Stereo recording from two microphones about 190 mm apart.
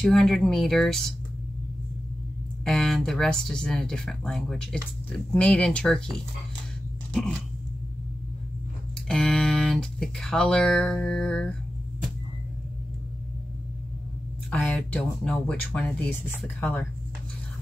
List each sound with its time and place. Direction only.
0.0 s speech: centre (ahead or behind)
2.6 s speech: centre (ahead or behind)
9.0 s speech: 5° left (ahead or behind)
14.5 s speech: 5° left (ahead or behind)